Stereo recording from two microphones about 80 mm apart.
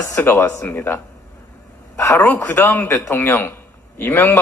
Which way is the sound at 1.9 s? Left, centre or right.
Left.